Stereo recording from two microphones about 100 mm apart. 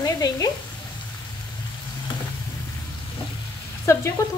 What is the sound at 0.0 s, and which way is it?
Sizzle, 40° left (ahead or behind).